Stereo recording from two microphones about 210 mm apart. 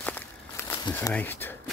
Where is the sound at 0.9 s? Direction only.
10° left (ahead or behind).